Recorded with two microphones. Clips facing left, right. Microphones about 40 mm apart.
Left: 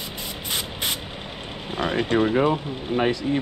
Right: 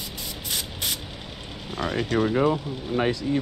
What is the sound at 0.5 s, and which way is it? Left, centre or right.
Spray, left.